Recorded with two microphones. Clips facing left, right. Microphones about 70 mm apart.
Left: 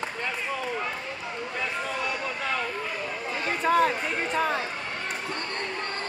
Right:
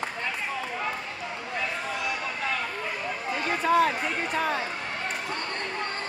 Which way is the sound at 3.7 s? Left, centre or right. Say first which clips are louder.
Even; left.